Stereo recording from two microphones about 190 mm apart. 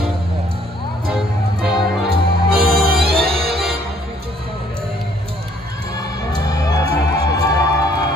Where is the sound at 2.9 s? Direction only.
55° right (ahead or behind).